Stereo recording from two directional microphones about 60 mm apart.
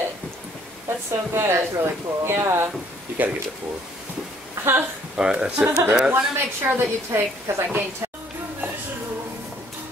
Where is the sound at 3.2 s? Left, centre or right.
Right.